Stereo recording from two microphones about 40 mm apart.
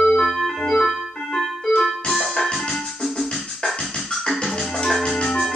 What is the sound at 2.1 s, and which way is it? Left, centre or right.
Music, centre.